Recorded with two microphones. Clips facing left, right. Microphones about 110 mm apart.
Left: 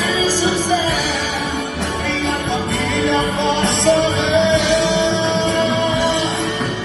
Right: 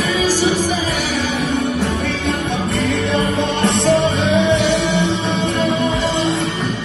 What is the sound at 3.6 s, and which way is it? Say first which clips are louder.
Music: right 2 dB; 70° left (ahead or behind).